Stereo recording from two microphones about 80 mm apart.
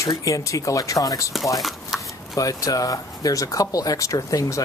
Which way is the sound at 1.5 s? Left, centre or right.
Centre.